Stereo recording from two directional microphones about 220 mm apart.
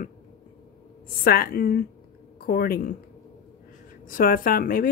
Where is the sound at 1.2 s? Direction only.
45° left (ahead or behind).